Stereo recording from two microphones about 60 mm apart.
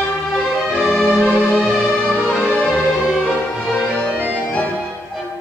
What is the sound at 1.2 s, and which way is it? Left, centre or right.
Music, left.